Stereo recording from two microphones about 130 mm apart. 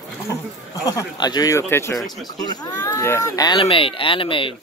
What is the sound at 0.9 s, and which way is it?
Speech, 30° left (ahead or behind).